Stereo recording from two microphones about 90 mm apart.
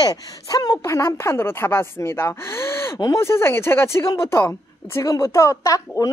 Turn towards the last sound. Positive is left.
turn(degrees=35)  # may be behind; listen again after turning